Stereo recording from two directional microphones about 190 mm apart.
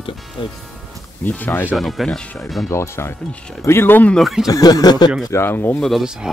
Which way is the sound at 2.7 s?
15° left (ahead or behind).